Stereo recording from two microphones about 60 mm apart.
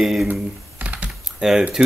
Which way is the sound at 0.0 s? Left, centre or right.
Centre.